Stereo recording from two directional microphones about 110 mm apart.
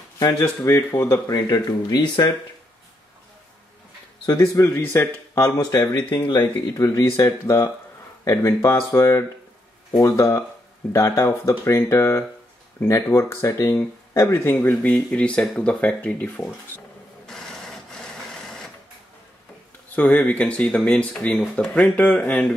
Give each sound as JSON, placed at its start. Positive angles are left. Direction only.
{"t": 0.2, "sound": "speech", "side_deg": 30}
{"t": 4.3, "sound": "speech", "side_deg": 30}
{"t": 17.3, "sound": "printer", "side_deg": 5}
{"t": 20.0, "sound": "speech", "side_deg": 15}